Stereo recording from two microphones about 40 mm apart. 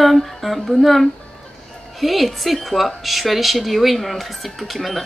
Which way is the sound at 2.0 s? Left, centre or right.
Centre.